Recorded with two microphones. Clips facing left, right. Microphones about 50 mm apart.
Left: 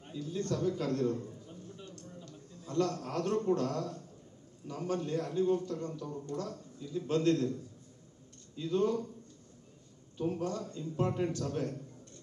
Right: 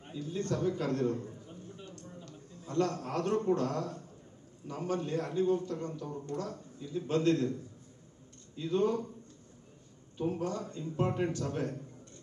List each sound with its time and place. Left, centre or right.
0.1 s a man's voice: right
1.5 s a sound: right
4.6 s a man's voice: right
8.5 s a man's voice: right
10.1 s a man's voice: right